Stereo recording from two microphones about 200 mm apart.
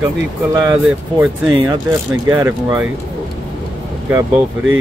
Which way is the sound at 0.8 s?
5° right (ahead or behind).